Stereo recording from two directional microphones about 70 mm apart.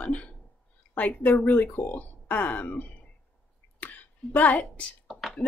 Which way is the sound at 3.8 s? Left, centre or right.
Left.